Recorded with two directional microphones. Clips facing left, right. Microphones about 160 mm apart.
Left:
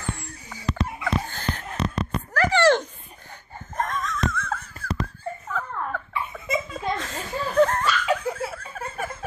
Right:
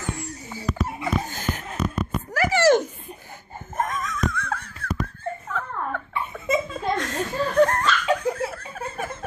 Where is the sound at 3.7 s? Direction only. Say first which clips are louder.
Right 1 dB; 5° right (ahead or behind).